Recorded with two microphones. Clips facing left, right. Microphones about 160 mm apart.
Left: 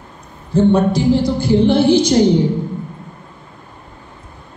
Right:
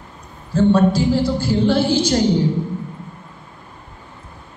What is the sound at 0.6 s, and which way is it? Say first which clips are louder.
A woman's voice: left 1 dB; 20° left (ahead or behind).